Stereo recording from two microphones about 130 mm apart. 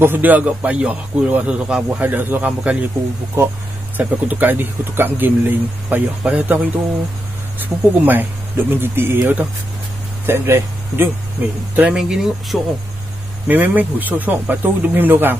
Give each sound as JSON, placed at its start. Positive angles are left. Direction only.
{"t": 0.0, "sound": "a man's voice", "side_deg": -15}